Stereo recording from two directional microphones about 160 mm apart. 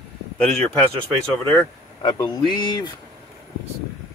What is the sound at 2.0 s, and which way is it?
Speech, 30° left (ahead or behind).